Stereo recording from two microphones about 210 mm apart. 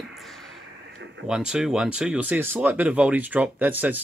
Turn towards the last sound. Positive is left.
turn(degrees=-10)  # may be behind; listen again after turning